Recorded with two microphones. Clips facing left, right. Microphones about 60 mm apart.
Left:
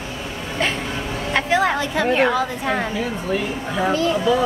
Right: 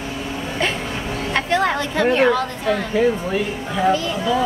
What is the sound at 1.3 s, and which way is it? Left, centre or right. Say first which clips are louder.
A woman's voice: left 1 dB; centre.